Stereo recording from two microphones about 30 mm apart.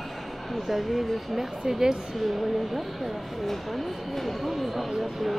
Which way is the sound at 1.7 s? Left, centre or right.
Right.